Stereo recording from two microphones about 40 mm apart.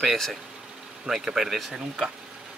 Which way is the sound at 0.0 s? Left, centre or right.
Centre.